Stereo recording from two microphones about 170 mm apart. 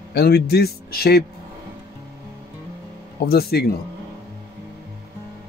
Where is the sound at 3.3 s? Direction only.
65° left (ahead or behind).